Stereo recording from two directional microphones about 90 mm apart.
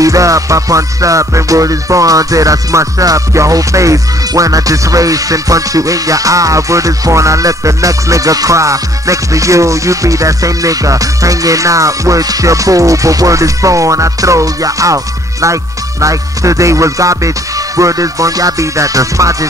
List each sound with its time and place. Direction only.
0.0 s music: 40° right (ahead or behind)